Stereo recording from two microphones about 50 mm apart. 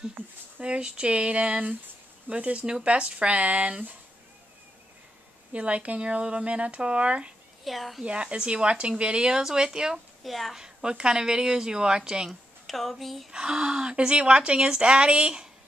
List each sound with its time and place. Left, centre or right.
0.2 s speech: right
0.6 s speech: right
5.5 s speech: right
7.6 s a woman's voice: centre
8.0 s speech: right
10.2 s a woman's voice: centre
10.5 s speech: centre
12.3 s a woman's voice: centre
13.3 s speech: centre